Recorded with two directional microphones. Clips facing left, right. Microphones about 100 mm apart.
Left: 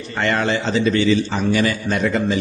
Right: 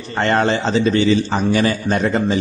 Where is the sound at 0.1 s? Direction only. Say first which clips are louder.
Right 3 dB; 35° right (ahead or behind).